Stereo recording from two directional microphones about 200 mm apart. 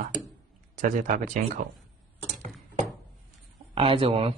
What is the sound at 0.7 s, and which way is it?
Speech, 40° right (ahead or behind).